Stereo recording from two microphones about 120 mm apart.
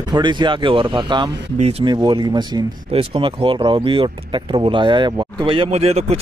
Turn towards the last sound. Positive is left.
turn(degrees=-60)  # may be behind; listen again after turning